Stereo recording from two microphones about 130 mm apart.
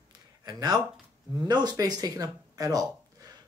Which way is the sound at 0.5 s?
30° right (ahead or behind).